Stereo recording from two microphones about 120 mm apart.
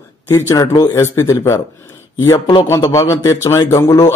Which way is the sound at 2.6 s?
25° left (ahead or behind).